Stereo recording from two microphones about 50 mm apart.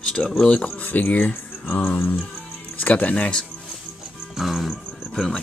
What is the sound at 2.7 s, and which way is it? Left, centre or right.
Speech, left.